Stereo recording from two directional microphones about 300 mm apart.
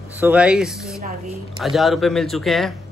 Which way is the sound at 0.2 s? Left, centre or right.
Centre.